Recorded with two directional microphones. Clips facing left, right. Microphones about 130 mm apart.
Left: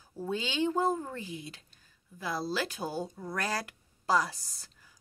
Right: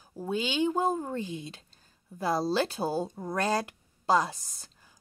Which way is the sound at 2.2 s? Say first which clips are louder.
Right 6 dB; 35° right (ahead or behind).